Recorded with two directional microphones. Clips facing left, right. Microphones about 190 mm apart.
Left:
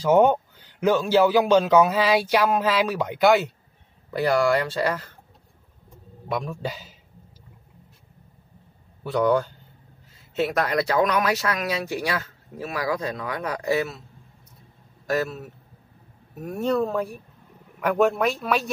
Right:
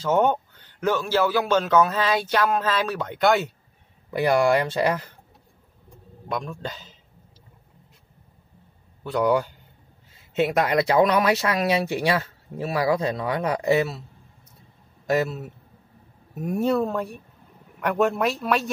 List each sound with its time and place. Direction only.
0.0 s speech: 10° left (ahead or behind)
4.1 s speech: 20° right (ahead or behind)
6.2 s speech: 5° left (ahead or behind)
9.0 s speech: 5° right (ahead or behind)
10.3 s speech: 20° right (ahead or behind)
15.0 s a man's voice: 20° right (ahead or behind)
16.4 s speech: 10° right (ahead or behind)